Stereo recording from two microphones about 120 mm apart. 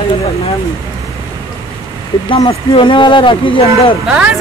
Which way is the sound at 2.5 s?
45° left (ahead or behind).